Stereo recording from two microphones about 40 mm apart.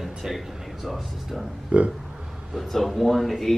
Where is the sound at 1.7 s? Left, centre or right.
Right.